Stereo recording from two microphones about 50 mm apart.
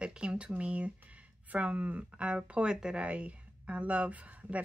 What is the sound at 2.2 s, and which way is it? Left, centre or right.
Speech, right.